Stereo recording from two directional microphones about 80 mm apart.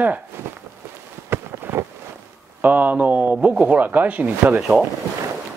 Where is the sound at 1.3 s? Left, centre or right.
Right.